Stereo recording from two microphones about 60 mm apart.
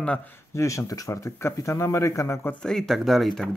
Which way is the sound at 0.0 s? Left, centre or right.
Left.